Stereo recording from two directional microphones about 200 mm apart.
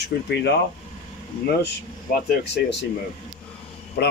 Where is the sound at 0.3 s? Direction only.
55° left (ahead or behind).